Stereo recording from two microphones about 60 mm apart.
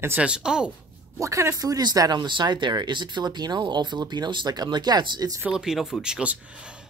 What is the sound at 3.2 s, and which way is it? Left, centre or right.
Speech, right.